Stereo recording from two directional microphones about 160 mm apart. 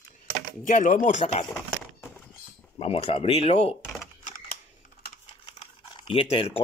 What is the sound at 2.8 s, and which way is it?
Speech, 40° left (ahead or behind).